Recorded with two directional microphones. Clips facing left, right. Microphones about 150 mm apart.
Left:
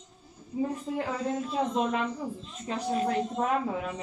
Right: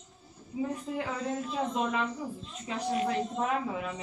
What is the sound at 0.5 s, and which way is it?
Speech, 40° left (ahead or behind).